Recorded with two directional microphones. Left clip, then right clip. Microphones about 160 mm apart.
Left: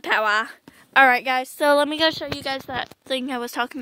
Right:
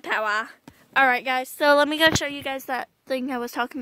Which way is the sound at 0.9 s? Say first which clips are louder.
Left 4 dB; 40° left (ahead or behind).